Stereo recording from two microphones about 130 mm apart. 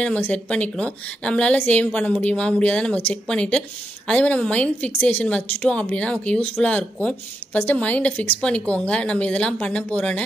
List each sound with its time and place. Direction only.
0.0 s a woman's voice: 10° left (ahead or behind)